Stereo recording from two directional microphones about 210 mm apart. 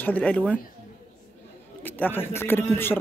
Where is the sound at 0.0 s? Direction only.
5° left (ahead or behind).